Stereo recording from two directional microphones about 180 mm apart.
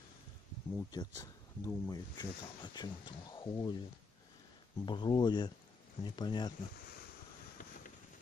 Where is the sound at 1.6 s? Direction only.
20° left (ahead or behind).